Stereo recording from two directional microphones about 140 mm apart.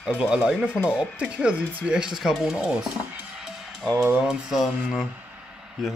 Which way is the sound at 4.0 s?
10° right (ahead or behind).